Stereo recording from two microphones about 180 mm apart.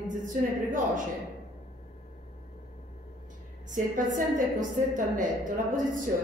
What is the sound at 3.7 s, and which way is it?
A woman's voice, 45° right (ahead or behind).